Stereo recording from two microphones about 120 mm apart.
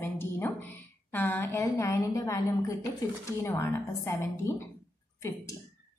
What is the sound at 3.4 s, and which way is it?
A woman's voice, 25° left (ahead or behind).